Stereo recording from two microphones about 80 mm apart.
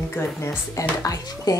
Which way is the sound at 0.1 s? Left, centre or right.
Left.